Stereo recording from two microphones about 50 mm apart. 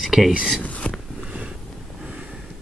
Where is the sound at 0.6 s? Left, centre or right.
Left.